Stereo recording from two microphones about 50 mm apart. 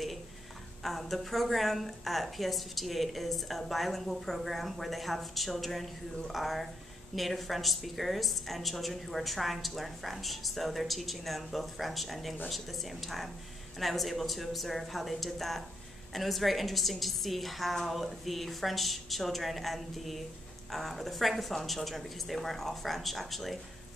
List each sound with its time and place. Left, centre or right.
0.8 s a woman's voice: centre